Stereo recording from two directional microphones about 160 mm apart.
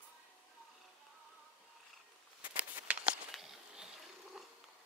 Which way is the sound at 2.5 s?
10° right (ahead or behind).